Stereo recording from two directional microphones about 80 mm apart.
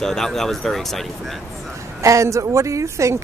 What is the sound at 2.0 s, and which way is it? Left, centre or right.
Speech, right.